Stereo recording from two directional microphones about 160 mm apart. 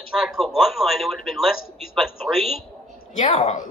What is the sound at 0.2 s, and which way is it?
Speech, centre (ahead or behind).